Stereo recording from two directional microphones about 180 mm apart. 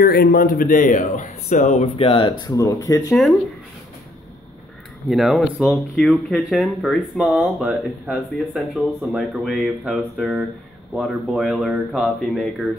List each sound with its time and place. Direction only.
0.0 s speech: 55° left (ahead or behind); by 3.2 s 20° left (ahead or behind)
5.1 s speech: centre (ahead or behind)